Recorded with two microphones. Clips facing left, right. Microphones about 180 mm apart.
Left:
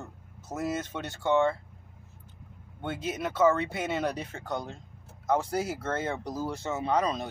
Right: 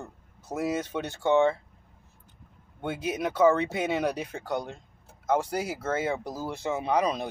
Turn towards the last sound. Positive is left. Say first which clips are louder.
# right 2 dB
turn(degrees=-15)  # may be behind; listen again after turning